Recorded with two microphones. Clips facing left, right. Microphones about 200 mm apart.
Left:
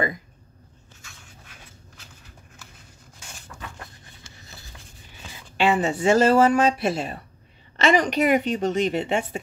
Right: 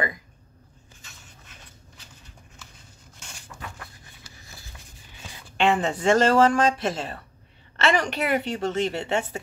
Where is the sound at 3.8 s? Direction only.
25° left (ahead or behind).